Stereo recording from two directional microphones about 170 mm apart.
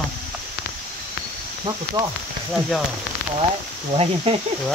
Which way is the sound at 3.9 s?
35° right (ahead or behind).